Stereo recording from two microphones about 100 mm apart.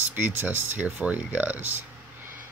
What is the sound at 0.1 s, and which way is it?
Speech, 20° right (ahead or behind).